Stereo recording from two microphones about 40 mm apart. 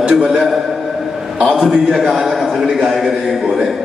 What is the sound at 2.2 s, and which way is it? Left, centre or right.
A man's voice, centre.